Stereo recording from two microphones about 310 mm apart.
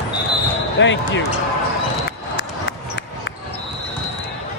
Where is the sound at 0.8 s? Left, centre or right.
Left.